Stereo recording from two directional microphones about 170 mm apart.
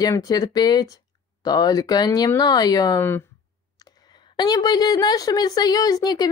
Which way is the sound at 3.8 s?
25° left (ahead or behind).